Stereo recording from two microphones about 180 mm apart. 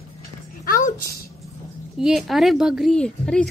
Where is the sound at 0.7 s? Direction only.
50° left (ahead or behind).